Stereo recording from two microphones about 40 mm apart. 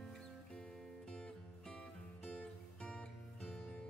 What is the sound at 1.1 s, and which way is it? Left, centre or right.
Music, left.